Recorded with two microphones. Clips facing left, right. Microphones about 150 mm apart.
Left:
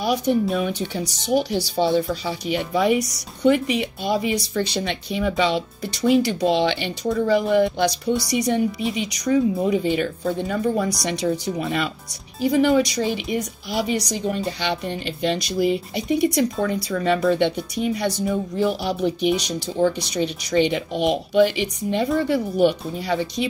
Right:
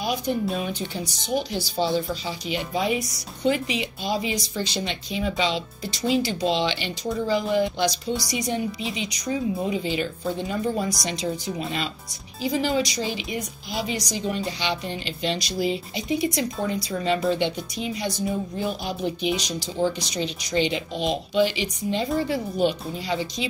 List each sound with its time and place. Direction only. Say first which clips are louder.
0.0 s speech: left 5 dB; 70° left (ahead or behind)
13.7 s a woman's voice: left 5 dB; 70° left (ahead or behind)
14.2 s a woman's voice: left 3 dB; 50° left (ahead or behind)